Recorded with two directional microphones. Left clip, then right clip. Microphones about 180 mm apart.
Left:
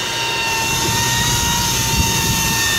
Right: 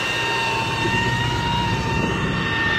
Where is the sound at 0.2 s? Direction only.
25° left (ahead or behind).